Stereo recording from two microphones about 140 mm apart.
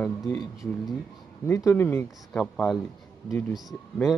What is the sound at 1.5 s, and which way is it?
Speech, 20° left (ahead or behind).